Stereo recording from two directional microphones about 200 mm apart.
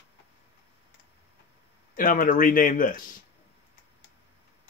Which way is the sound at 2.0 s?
40° left (ahead or behind).